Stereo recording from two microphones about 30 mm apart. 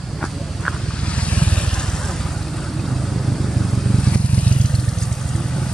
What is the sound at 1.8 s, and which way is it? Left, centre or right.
Vehicle, centre.